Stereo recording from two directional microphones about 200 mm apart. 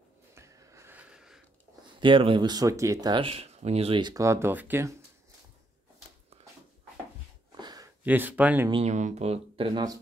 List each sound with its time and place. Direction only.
0.3 s wheeze: 15° right (ahead or behind)
2.0 s speech: 25° right (ahead or behind)
6.3 s dog: 30° right (ahead or behind)
7.5 s a sound: 20° right (ahead or behind)
8.0 s speech: 10° right (ahead or behind)
8.6 s speech: 30° right (ahead or behind)